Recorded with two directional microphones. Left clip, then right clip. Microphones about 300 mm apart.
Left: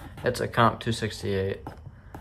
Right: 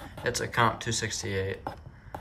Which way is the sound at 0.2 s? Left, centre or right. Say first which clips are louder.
Left 3 dB; centre.